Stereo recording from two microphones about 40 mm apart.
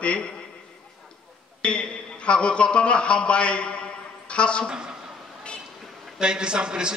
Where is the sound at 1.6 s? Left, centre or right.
Left.